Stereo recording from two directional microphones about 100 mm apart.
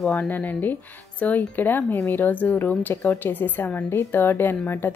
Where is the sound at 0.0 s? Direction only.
15° left (ahead or behind).